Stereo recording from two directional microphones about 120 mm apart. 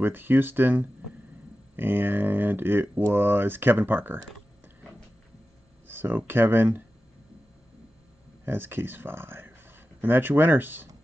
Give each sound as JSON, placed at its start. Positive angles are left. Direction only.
{"t": 0.0, "sound": "speech", "side_deg": -15}
{"t": 5.9, "sound": "speech", "side_deg": -15}
{"t": 8.5, "sound": "speech", "side_deg": -20}